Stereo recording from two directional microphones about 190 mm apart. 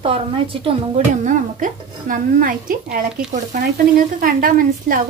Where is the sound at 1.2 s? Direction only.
45° right (ahead or behind).